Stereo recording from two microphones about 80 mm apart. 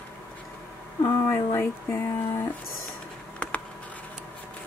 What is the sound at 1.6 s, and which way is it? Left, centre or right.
Speech, left.